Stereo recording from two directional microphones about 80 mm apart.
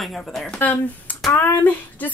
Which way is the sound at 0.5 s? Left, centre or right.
Left.